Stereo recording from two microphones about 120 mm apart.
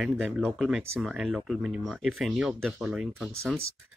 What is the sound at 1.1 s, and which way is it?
Speech, 5° right (ahead or behind).